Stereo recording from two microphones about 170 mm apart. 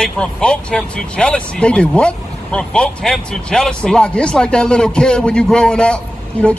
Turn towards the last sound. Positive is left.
turn(degrees=5)  # may be behind; listen again after turning